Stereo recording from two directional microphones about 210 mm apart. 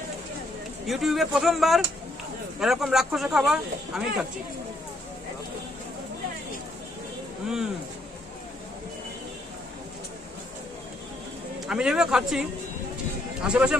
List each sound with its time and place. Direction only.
0.8 s speech: centre (ahead or behind)
11.6 s speech: 5° right (ahead or behind)